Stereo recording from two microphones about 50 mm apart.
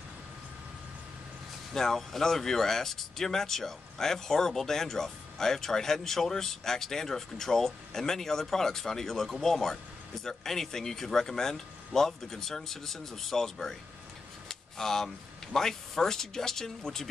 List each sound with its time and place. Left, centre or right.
1.7 s speech: centre
14.5 s a sound: centre
15.5 s speech: centre